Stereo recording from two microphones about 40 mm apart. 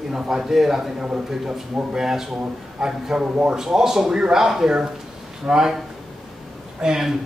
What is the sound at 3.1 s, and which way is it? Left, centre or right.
Speech, right.